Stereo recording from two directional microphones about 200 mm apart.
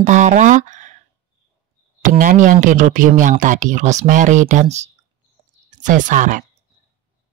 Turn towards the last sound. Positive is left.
turn(degrees=-40)  # may be behind; listen again after turning